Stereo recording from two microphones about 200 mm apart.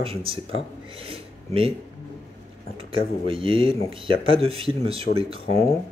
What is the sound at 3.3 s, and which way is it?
Speech, 25° right (ahead or behind).